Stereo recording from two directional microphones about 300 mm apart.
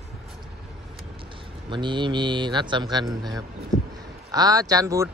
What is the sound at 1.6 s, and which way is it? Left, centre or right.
Speech, centre.